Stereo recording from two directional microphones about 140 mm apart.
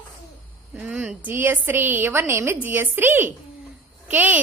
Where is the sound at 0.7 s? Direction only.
10° right (ahead or behind).